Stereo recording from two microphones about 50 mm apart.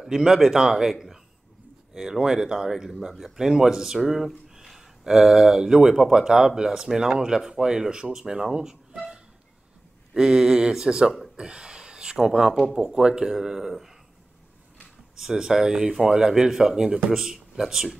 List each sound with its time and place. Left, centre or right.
0.0 s speech: centre
3.3 s speech: centre
15.1 s speech: centre